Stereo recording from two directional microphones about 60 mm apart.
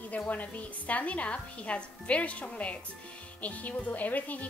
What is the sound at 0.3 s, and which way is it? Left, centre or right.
Speech, left.